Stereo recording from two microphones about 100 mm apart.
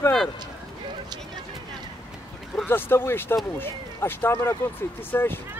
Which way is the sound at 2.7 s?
20° left (ahead or behind).